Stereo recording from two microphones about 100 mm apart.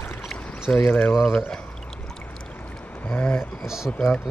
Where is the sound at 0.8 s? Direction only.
15° left (ahead or behind).